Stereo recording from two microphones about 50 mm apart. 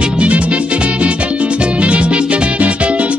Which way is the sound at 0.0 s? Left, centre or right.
Right.